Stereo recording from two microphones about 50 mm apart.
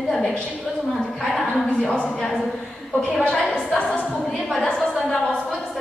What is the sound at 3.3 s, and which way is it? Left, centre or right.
Speech, left.